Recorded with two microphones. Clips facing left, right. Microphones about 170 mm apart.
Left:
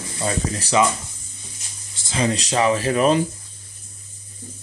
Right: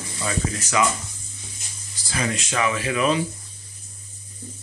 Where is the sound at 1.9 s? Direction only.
25° left (ahead or behind); by 3.2 s 40° left (ahead or behind).